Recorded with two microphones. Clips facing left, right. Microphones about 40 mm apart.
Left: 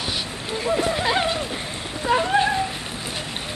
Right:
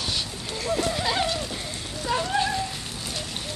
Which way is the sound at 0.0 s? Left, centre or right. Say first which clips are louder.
Left 2 dB; centre.